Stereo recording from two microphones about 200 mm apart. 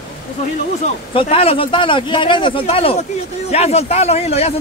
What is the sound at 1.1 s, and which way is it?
A man's voice, 30° left (ahead or behind).